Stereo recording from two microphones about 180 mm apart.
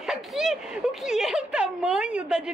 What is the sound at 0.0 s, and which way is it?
Speech, centre (ahead or behind).